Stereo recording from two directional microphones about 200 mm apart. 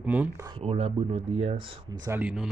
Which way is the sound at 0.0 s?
10° right (ahead or behind).